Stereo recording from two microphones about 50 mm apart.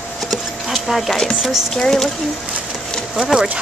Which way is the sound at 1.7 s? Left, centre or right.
Centre.